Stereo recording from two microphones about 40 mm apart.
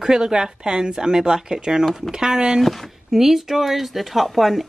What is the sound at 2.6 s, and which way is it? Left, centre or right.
Speech, centre.